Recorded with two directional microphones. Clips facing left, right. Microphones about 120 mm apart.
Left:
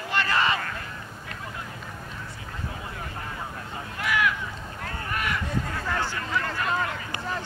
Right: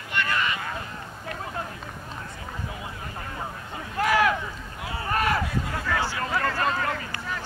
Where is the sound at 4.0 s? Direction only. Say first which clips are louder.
Right 5 dB; 35° right (ahead or behind).